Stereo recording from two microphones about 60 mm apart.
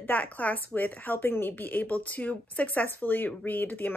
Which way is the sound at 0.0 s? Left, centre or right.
Left.